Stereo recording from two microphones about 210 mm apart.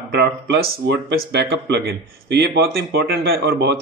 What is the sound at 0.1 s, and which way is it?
Speech, 55° right (ahead or behind).